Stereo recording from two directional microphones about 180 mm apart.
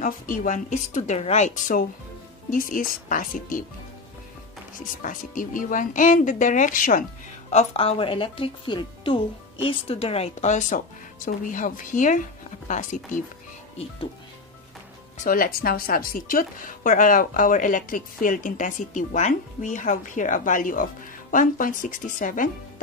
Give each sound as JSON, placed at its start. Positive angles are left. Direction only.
{"t": 0.0, "sound": "a woman's voice", "side_deg": 45}
{"t": 4.7, "sound": "a woman's voice", "side_deg": 50}
{"t": 7.5, "sound": "a woman's voice", "side_deg": 30}
{"t": 15.2, "sound": "a woman's voice", "side_deg": 50}